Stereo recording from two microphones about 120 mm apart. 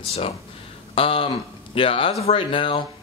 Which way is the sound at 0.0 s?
55° left (ahead or behind).